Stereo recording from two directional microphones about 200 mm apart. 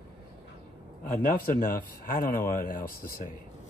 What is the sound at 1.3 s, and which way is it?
Speech, 45° left (ahead or behind).